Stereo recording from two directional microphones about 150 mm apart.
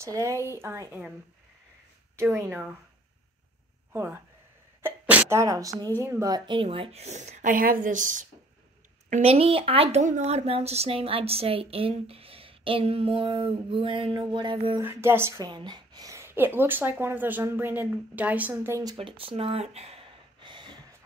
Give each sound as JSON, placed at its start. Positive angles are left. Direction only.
{"t": 0.0, "sound": "a woman's voice", "side_deg": -20}
{"t": 2.1, "sound": "a woman's voice", "side_deg": -20}
{"t": 3.9, "sound": "speech", "side_deg": -15}
{"t": 4.8, "sound": "sneeze", "side_deg": -10}
{"t": 5.4, "sound": "a woman's voice", "side_deg": -20}
{"t": 9.1, "sound": "a woman's voice", "side_deg": -40}
{"t": 10.0, "sound": "a woman's voice", "side_deg": -50}
{"t": 14.8, "sound": "a woman's voice", "side_deg": -15}
{"t": 18.9, "sound": "a sound", "side_deg": -35}